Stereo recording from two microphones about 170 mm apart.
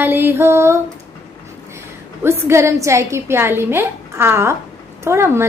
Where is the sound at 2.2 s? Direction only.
15° right (ahead or behind).